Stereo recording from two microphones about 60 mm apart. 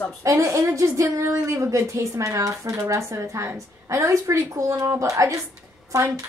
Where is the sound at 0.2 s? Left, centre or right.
Right.